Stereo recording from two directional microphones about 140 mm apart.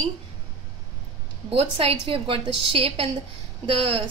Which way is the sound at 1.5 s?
40° right (ahead or behind).